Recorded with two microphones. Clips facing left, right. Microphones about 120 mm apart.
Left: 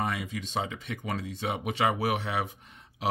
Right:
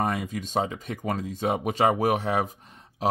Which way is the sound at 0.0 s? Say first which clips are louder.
Right 4 dB; 45° right (ahead or behind).